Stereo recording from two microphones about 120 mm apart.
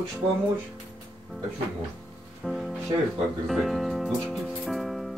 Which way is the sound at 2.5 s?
Centre (ahead or behind).